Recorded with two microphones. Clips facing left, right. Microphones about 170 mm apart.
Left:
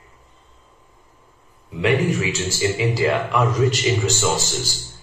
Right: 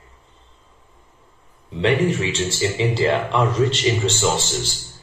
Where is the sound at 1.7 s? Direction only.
30° right (ahead or behind).